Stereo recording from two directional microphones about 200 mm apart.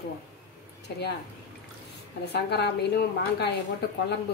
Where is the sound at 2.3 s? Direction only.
55° left (ahead or behind).